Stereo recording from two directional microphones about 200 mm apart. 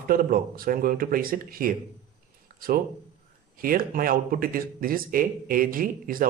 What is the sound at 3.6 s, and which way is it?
Speech, 45° right (ahead or behind).